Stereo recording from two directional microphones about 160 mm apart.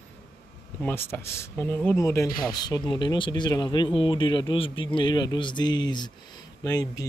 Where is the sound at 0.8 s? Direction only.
15° left (ahead or behind).